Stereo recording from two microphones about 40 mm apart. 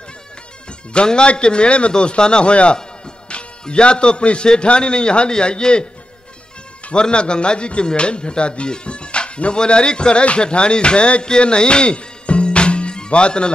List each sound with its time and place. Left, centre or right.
0.7 s a man's voice: left
6.9 s speech: left